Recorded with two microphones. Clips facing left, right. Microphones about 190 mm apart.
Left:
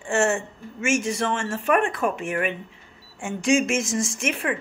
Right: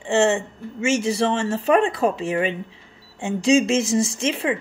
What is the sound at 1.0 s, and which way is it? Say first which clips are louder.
A woman's voice: right 4 dB; 30° right (ahead or behind).